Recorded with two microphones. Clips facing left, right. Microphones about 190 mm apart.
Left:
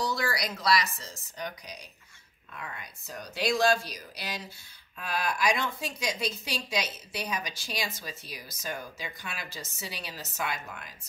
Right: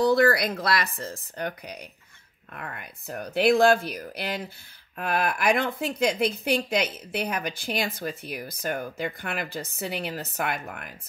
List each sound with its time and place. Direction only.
0.0 s speech: 55° right (ahead or behind)